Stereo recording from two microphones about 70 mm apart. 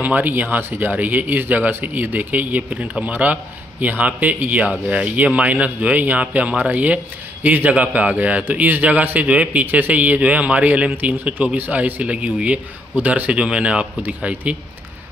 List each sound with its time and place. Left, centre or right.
0.0 s a man's voice: right